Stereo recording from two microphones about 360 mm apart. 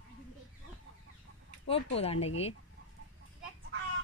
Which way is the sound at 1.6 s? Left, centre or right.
Centre.